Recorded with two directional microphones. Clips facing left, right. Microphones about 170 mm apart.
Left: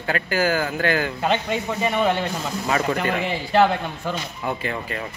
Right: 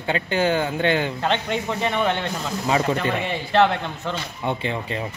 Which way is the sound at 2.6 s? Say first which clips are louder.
Right 2 dB; 20° right (ahead or behind).